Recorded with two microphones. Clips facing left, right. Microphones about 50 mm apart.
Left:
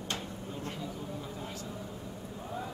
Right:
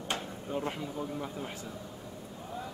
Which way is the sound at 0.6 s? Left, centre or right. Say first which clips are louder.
Right 4 dB; right.